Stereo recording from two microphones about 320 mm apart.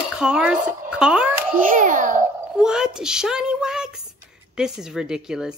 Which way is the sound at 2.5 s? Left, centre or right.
Centre.